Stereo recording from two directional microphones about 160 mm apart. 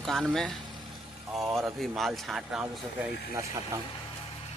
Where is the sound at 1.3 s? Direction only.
15° right (ahead or behind).